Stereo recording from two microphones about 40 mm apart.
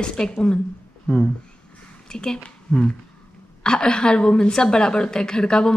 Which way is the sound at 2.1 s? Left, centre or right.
Centre.